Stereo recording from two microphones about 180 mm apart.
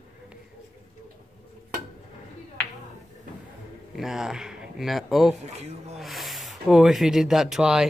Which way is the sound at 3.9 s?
Centre (ahead or behind).